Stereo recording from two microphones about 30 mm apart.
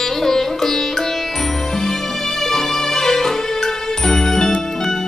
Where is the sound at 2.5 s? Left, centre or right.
Centre.